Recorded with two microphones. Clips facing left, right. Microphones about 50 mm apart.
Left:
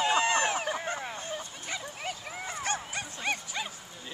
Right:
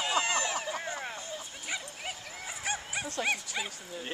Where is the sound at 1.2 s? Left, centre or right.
Left.